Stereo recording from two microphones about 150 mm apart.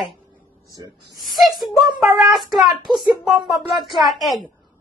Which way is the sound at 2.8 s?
30° right (ahead or behind).